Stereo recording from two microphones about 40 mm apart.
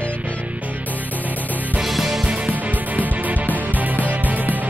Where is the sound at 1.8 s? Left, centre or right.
Centre.